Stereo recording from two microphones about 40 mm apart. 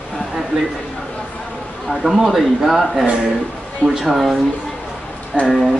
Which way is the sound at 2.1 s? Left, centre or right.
Centre.